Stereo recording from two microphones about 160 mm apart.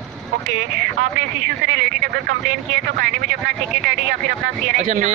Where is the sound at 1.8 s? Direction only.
90° right.